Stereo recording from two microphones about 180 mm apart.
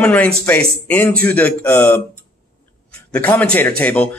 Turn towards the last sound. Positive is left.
turn(degrees=5)  # may be behind; listen again after turning